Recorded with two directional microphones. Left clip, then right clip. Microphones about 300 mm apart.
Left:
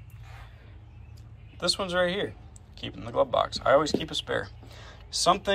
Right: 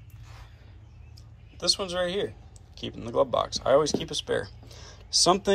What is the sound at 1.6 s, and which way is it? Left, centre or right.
Speech, centre.